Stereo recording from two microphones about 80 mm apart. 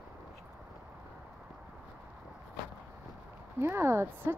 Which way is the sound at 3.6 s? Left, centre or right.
Right.